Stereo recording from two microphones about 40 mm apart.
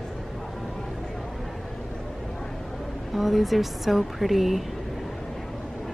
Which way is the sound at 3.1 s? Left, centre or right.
Centre.